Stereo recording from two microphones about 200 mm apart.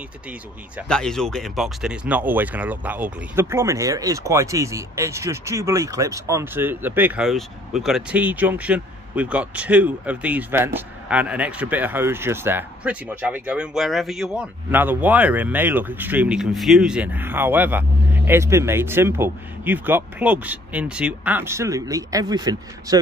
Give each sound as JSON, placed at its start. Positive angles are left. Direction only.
{"t": 0.8, "sound": "speech", "side_deg": 5}